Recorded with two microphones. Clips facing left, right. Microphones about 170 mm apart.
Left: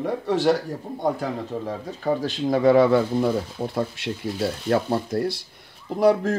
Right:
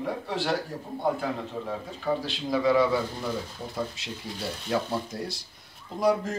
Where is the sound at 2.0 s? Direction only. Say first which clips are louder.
Left 6 dB; 50° left (ahead or behind).